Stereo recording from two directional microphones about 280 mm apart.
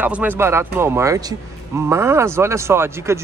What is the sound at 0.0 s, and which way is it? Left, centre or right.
Speech, centre.